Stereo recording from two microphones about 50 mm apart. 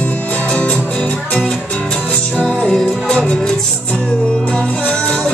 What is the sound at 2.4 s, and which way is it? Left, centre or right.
Music, centre.